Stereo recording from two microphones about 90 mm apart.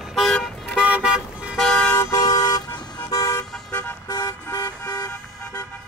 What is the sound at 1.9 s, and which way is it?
Vehicle, 30° left (ahead or behind).